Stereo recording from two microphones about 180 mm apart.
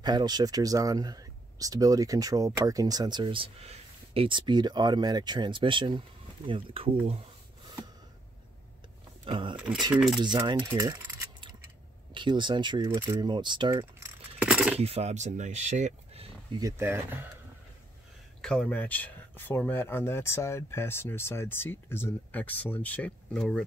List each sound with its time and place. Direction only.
0.0 s speech: 25° right (ahead or behind)
9.2 s speech: 25° right (ahead or behind)
9.9 s speech: centre (ahead or behind)
10.2 s speech: 25° right (ahead or behind)
12.1 s speech: 25° right (ahead or behind); by 14.8 s 5° right (ahead or behind)
14.8 s speech: 35° right (ahead or behind)
16.5 s speech: 15° right (ahead or behind)
18.4 s speech: 5° left (ahead or behind)